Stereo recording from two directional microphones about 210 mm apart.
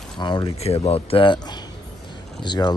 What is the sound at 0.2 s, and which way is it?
Speech, 20° left (ahead or behind).